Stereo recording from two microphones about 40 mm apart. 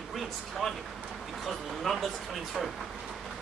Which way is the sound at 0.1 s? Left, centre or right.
Centre.